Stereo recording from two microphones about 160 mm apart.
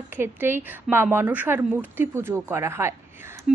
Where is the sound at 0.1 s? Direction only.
15° right (ahead or behind).